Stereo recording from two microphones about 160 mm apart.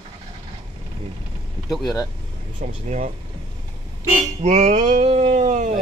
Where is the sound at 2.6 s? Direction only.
50° right (ahead or behind).